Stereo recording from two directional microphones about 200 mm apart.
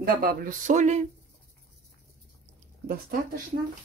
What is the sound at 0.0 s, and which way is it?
Speech, 45° right (ahead or behind).